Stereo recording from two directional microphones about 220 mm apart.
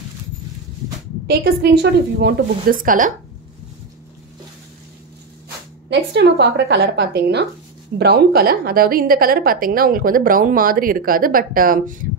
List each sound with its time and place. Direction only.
1.2 s a woman's voice: 45° right (ahead or behind)
5.9 s a woman's voice: 50° right (ahead or behind)